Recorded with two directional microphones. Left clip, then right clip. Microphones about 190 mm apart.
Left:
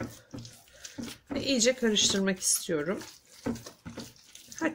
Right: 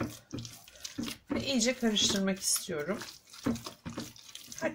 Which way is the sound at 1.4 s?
40° left (ahead or behind).